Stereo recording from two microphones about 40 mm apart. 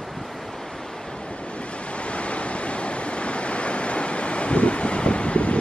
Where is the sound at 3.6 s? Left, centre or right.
Left.